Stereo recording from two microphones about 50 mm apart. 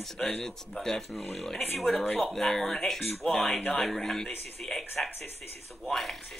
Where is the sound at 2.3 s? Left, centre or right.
Centre.